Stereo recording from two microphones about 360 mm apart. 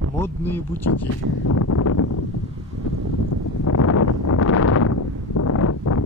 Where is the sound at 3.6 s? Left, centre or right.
Left.